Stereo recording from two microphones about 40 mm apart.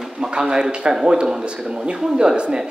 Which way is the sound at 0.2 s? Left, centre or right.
Centre.